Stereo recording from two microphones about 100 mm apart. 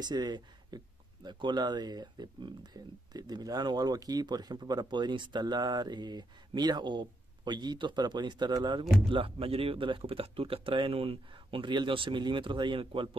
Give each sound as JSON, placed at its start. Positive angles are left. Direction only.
{"t": 0.0, "sound": "speech", "side_deg": -45}
{"t": 9.1, "sound": "speech", "side_deg": -70}